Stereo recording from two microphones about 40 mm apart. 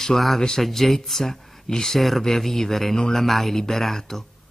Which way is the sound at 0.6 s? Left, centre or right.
Centre.